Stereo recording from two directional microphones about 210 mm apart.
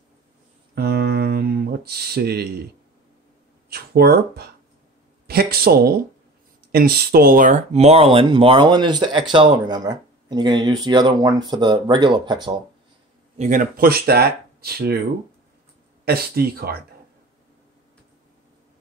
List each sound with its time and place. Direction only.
0.7 s a sound: 50° right (ahead or behind)
3.7 s speech: 50° right (ahead or behind); by 12.5 s 20° right (ahead or behind)
13.4 s speech: 40° right (ahead or behind)
16.1 s speech: 45° right (ahead or behind)